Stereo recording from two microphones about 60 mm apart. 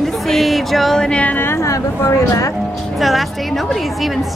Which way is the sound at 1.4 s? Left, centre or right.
Left.